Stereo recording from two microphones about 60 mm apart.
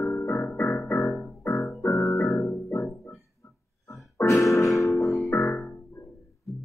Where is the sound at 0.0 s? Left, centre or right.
Left.